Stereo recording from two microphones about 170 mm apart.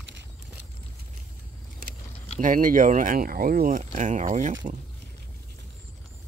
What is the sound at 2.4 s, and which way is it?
Speech, 50° right (ahead or behind).